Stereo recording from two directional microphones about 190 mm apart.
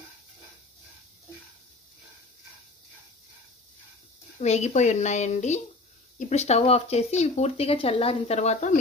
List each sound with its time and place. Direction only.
4.4 s speech: 35° left (ahead or behind)